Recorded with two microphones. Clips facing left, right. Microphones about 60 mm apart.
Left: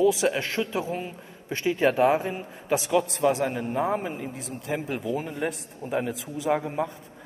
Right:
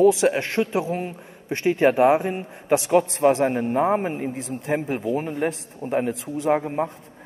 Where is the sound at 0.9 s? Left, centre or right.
Right.